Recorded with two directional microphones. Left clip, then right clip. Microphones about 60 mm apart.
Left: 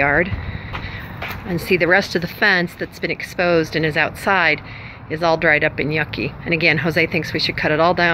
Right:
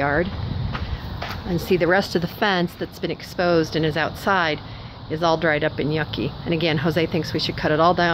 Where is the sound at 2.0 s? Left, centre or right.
Right.